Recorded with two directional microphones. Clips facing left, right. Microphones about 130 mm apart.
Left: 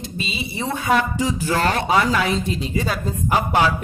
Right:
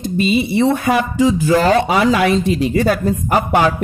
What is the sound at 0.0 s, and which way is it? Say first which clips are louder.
Speech: right 13 dB; 55° right (ahead or behind).